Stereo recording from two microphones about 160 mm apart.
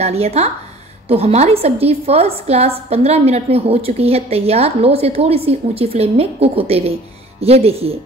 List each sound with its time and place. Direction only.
0.0 s a woman's voice: 40° right (ahead or behind)